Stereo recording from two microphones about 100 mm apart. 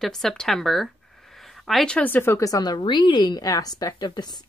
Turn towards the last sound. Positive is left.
turn(degrees=45)  # may be behind; listen again after turning